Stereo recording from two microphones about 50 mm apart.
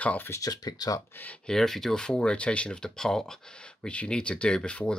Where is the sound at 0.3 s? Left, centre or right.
Left.